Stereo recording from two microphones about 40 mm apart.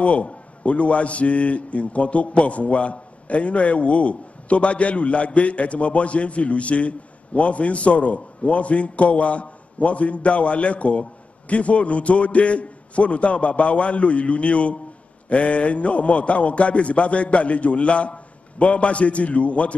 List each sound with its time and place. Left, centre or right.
0.0 s a man's voice: left